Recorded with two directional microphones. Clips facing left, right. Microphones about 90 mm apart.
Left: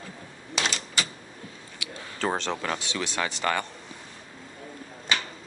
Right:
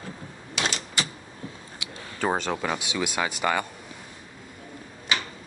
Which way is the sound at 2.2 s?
10° right (ahead or behind).